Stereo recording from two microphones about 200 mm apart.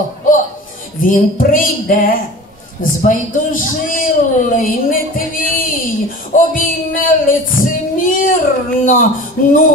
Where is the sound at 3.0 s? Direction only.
40° left (ahead or behind).